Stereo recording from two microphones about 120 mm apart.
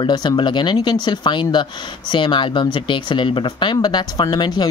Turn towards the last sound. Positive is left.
turn(degrees=35)  # may be behind; listen again after turning